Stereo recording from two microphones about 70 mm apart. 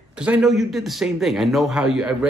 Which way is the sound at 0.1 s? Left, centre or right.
Centre.